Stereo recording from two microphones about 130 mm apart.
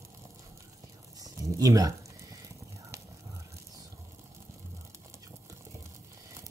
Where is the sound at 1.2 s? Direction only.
25° right (ahead or behind).